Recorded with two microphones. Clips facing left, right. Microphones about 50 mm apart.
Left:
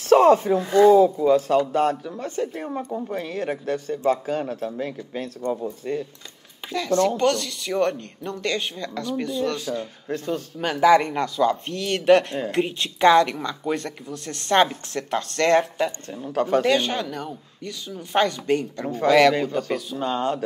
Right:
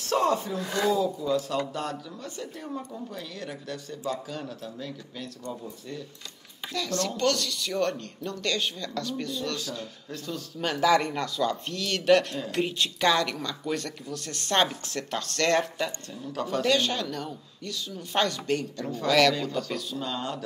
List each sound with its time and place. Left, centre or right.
0.0 s speech: left
6.7 s speech: left
10.6 s speech: centre; by 16.6 s left
16.6 s speech: left
20.0 s speech: left